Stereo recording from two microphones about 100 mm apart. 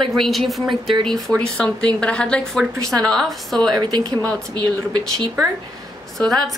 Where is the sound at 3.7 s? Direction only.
40° right (ahead or behind).